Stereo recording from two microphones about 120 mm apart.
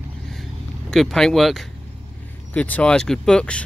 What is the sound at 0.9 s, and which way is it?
Speech, 5° left (ahead or behind).